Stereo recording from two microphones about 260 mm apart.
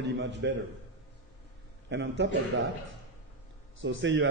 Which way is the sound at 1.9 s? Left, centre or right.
Right.